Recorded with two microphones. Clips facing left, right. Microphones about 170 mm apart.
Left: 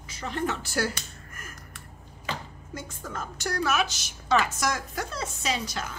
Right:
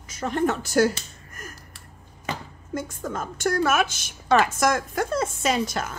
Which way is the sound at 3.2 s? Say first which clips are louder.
Right 6 dB; 50° right (ahead or behind).